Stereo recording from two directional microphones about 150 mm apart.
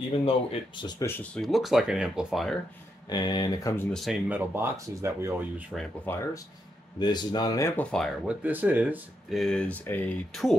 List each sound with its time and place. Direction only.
0.2 s speech: 40° left (ahead or behind)
1.0 s speech: 10° left (ahead or behind)
3.1 s speech: 30° left (ahead or behind)
3.9 s speech: centre (ahead or behind)
4.3 s speech: 15° right (ahead or behind)
6.1 s speech: 15° left (ahead or behind)
7.0 s speech: 30° left (ahead or behind); by 8.1 s 5° left (ahead or behind)
8.3 s speech: 10° right (ahead or behind)
9.3 s speech: 5° left (ahead or behind)
10.3 s speech: centre (ahead or behind)